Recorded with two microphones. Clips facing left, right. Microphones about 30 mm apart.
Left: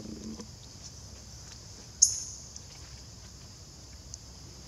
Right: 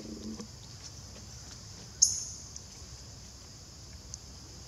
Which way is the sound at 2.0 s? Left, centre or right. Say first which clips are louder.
Left 2 dB; centre.